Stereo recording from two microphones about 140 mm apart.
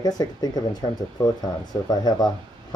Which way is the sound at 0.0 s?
30° left (ahead or behind).